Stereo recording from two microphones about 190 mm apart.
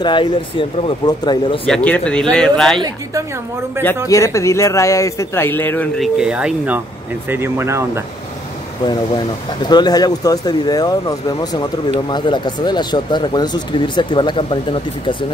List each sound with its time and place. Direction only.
0.0 s speech: 25° left (ahead or behind)
1.7 s speech: 5° left (ahead or behind)
3.8 s speech: 10° right (ahead or behind)
4.1 s speech: 15° left (ahead or behind)
5.9 s speech: 5° right (ahead or behind)
8.8 s speech: 25° left (ahead or behind)